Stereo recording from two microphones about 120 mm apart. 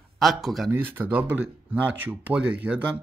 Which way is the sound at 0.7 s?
15° right (ahead or behind).